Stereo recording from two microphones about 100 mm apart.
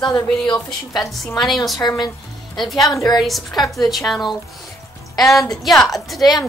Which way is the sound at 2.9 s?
35° left (ahead or behind).